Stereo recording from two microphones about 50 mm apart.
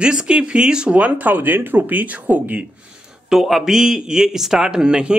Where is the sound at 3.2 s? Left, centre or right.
Centre.